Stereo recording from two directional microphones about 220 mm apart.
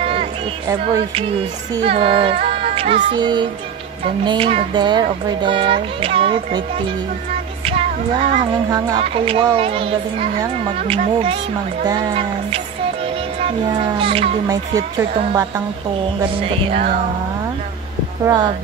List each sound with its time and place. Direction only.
0.0 s music: 25° right (ahead or behind)
4.2 s a woman's voice: 20° right (ahead or behind)
7.6 s music: 30° right (ahead or behind)
8.6 s a woman's voice: 15° right (ahead or behind)
13.9 s a woman's voice: 25° right (ahead or behind)
18.2 s a woman's voice: 20° right (ahead or behind)